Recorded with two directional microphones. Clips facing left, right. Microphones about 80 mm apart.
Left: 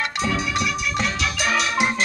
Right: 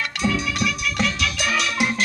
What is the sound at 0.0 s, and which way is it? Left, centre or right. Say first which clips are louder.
Music: even; left.